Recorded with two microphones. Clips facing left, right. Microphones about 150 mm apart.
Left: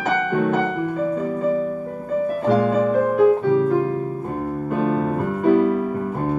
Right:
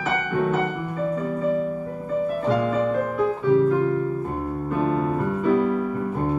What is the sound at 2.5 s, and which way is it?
Music, 65° left (ahead or behind).